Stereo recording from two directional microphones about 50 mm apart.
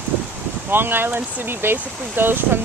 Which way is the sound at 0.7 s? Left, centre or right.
Right.